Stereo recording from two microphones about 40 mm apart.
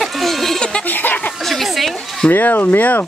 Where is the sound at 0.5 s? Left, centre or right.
Left.